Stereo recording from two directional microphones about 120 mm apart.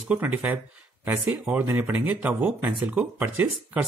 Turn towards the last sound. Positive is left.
turn(degrees=-15)  # may be behind; listen again after turning